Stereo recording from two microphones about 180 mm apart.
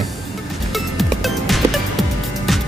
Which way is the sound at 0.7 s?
Centre (ahead or behind).